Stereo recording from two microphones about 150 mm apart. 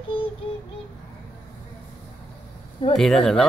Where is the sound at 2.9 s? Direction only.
Centre (ahead or behind).